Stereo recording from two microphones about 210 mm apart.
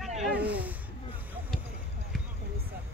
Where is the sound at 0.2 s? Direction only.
5° right (ahead or behind).